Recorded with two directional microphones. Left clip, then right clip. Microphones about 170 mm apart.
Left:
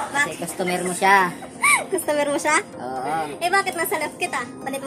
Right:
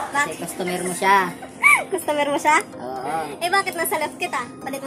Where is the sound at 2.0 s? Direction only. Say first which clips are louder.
Right 3 dB; 20° right (ahead or behind).